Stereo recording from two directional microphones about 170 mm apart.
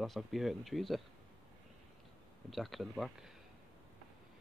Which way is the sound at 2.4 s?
Centre (ahead or behind).